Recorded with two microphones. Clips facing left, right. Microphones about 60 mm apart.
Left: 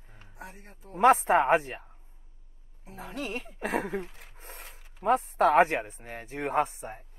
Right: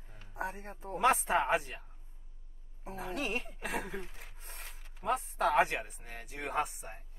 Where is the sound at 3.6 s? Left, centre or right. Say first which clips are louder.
Left 12 dB; left.